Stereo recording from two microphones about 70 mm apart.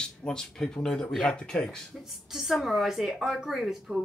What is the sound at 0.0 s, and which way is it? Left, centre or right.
Speech, centre.